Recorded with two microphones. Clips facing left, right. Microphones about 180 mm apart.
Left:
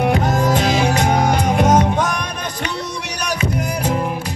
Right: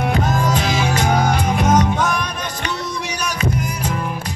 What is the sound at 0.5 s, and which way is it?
Music, 60° left (ahead or behind).